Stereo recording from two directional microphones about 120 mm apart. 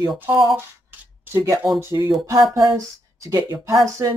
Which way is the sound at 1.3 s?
30° right (ahead or behind).